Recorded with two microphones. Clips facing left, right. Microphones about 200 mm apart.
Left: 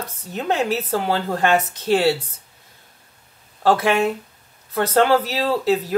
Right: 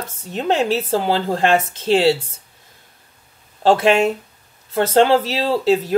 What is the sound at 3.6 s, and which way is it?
Speech, 25° right (ahead or behind).